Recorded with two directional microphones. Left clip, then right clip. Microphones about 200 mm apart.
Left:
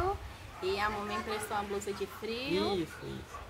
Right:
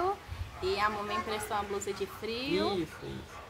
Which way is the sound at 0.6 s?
15° right (ahead or behind).